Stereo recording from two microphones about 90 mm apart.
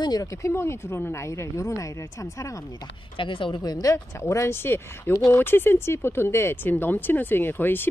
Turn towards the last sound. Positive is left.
turn(degrees=25)  # may be behind; listen again after turning